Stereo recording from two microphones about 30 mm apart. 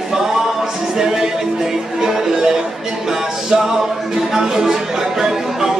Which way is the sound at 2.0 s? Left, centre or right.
Centre.